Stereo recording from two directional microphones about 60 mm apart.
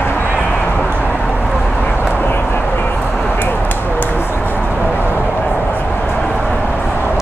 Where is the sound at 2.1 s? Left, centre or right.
Left.